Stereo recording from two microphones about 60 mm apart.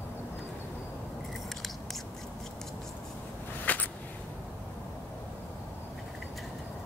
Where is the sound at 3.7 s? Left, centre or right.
Left.